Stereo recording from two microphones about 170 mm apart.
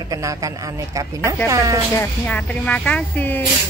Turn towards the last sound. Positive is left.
turn(degrees=10)  # may be behind; listen again after turning